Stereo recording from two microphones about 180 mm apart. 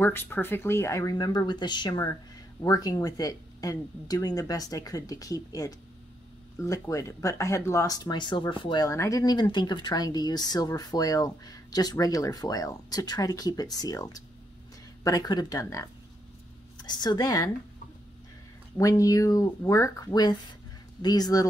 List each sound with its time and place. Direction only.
0.0 s a woman's voice: 10° left (ahead or behind)
18.8 s speech: 20° left (ahead or behind)